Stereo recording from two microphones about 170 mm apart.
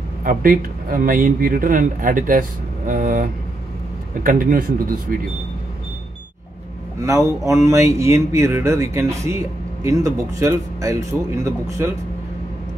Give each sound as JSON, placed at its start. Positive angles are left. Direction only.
{"t": 0.2, "sound": "a man's voice", "side_deg": -55}
{"t": 7.0, "sound": "speech", "side_deg": -20}